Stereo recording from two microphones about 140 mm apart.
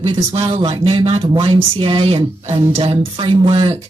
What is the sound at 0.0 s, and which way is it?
Speech, 40° right (ahead or behind).